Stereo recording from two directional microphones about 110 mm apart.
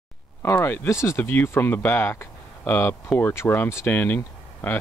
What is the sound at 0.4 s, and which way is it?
Speech, 20° left (ahead or behind).